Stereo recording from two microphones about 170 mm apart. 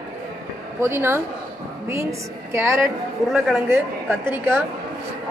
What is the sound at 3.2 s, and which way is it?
Speech, centre (ahead or behind).